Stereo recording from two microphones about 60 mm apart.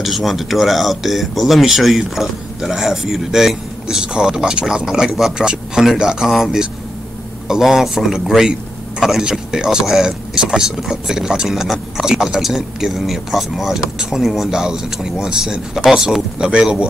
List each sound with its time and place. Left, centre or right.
0.0 s speech: centre